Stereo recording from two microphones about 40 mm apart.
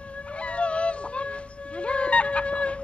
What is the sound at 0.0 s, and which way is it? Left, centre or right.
Music, left.